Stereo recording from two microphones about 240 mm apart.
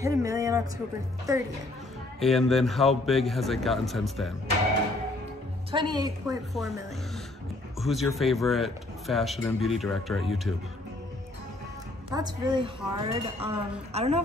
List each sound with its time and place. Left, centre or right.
0.0 s a woman's voice: centre
2.1 s speech: centre
5.7 s a woman's voice: centre
7.8 s speech: centre
12.1 s speech: centre